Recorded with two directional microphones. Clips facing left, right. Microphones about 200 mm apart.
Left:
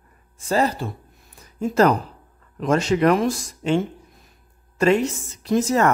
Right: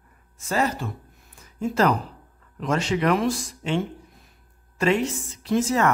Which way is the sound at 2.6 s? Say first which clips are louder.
Left 5 dB; 45° left (ahead or behind).